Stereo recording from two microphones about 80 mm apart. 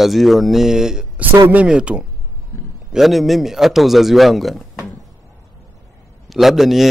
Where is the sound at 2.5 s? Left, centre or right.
Left.